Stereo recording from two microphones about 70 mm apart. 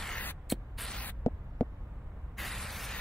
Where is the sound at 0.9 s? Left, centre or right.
Left.